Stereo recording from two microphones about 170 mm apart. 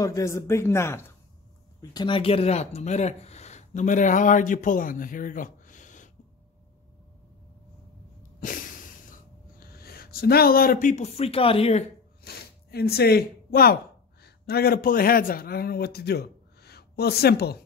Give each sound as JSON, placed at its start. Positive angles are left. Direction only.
{"t": 0.0, "sound": "speech", "side_deg": 20}
{"t": 1.8, "sound": "speech", "side_deg": 25}
{"t": 8.2, "sound": "a sound", "side_deg": 55}
{"t": 9.6, "sound": "speech", "side_deg": 65}
{"t": 12.2, "sound": "a man's voice", "side_deg": 65}